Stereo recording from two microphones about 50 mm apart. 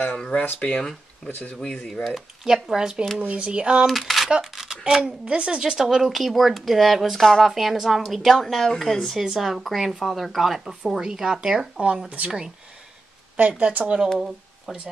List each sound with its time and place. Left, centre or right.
0.1 s speech: left
2.0 s speech: centre
3.2 s speech: right
3.8 s speech: centre
4.6 s speech: centre
7.5 s a woman's voice: centre
13.5 s speech: right
14.7 s a woman's voice: centre